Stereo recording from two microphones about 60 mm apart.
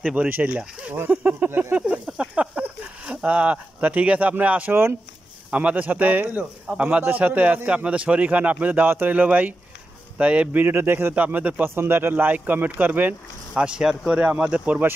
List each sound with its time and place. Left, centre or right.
0.0 s a man's voice: right
0.9 s speech: right
1.8 s a man's voice: centre
10.6 s speech: right
11.6 s speech: right
13.6 s speech: centre
14.1 s a man's voice: right